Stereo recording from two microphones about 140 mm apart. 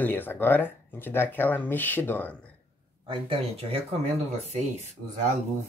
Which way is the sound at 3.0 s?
40° right (ahead or behind).